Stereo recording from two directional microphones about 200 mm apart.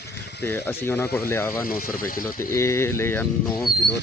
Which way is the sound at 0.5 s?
10° left (ahead or behind).